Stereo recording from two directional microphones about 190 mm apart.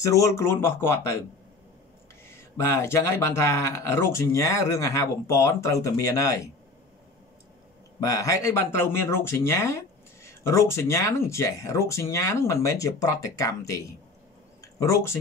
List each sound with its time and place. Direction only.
0.0 s speech: 15° left (ahead or behind)
2.2 s speech: 15° left (ahead or behind)
8.0 s speech: 15° left (ahead or behind)
14.6 s a sound: 15° left (ahead or behind)